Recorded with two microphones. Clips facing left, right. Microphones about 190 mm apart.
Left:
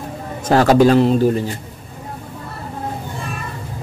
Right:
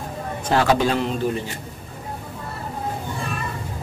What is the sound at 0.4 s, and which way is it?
Speech, 40° left (ahead or behind).